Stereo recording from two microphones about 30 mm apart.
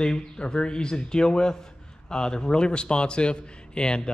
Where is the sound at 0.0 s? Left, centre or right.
Left.